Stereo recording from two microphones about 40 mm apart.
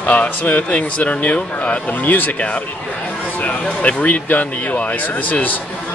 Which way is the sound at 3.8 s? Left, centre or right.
Left.